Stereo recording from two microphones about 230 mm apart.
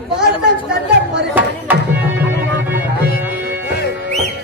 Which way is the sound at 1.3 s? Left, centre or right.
Centre.